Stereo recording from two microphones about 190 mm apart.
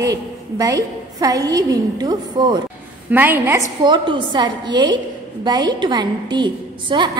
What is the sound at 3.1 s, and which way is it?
A woman's voice, 10° right (ahead or behind).